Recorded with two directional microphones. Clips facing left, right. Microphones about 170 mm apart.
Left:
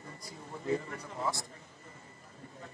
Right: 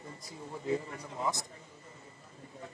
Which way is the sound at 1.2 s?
20° right (ahead or behind).